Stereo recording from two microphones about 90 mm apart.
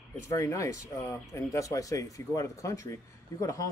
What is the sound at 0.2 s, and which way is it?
Speech, 35° left (ahead or behind).